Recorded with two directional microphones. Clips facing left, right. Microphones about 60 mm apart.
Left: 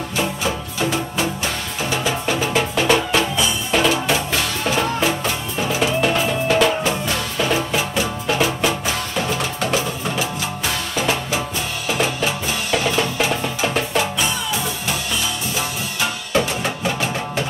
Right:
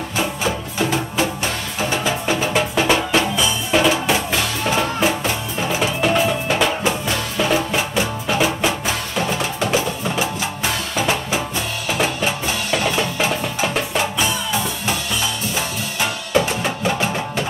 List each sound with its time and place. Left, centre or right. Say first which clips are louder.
2.0 s music: right 1 dB; centre
3.7 s drum: right 1 dB; centre
5.8 s music: right 1 dB; centre
12.7 s music: left 1 dB; centre